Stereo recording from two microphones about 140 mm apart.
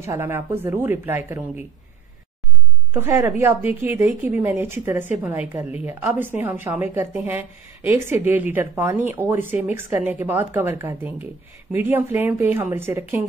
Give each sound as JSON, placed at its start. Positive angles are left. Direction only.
{"t": 0.0, "sound": "speech", "side_deg": -20}
{"t": 2.9, "sound": "speech", "side_deg": -15}